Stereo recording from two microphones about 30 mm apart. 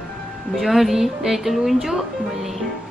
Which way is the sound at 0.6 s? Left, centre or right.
Centre.